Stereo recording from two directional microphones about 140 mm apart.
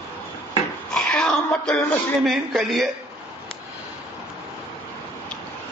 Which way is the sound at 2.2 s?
Centre (ahead or behind).